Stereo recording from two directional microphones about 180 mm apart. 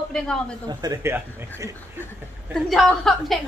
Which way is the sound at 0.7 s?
20° right (ahead or behind).